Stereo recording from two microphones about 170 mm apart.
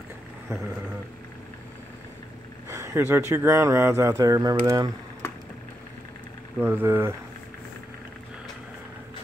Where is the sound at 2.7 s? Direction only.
15° right (ahead or behind).